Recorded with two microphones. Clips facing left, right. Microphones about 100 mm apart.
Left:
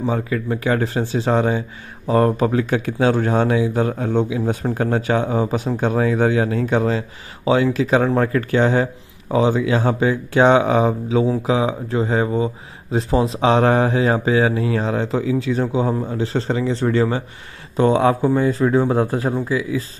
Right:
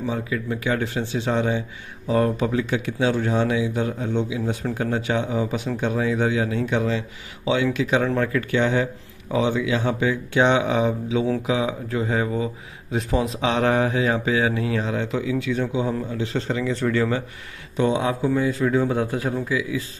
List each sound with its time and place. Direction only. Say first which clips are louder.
0.0 s speech: left 4 dB; 45° left (ahead or behind)
17.7 s speech: left 6 dB; 45° left (ahead or behind)